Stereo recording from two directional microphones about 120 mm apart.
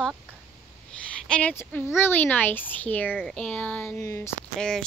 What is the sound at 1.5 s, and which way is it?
A child's voice, 20° left (ahead or behind).